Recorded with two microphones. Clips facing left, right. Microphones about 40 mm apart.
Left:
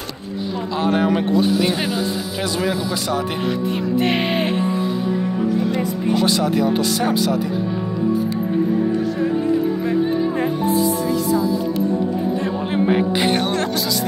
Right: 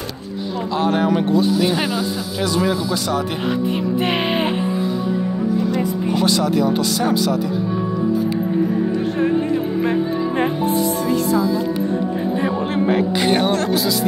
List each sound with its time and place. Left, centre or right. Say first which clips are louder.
0.7 s speech: right 1 dB; centre
4.0 s speech: even; centre
6.2 s speech: right 2 dB; centre
12.5 s speech: left 2 dB; centre
13.3 s speech: right 3 dB; centre